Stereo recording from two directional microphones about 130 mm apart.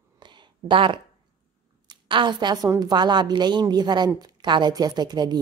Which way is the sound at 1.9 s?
35° right (ahead or behind).